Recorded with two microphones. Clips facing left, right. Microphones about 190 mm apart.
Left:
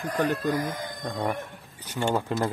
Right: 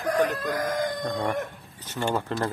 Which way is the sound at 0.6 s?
85° right.